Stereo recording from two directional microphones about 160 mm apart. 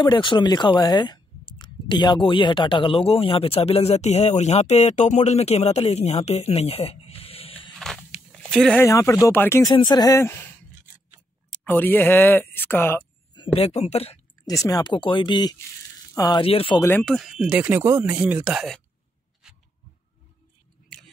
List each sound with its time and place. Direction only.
0.0 s speech: 30° left (ahead or behind)
8.3 s a sound: 5° left (ahead or behind)
8.8 s speech: 15° left (ahead or behind)
11.6 s speech: 10° left (ahead or behind)
13.3 s speech: 35° left (ahead or behind)
14.4 s speech: 20° left (ahead or behind)
16.4 s speech: 35° left (ahead or behind)
17.0 s speech: centre (ahead or behind)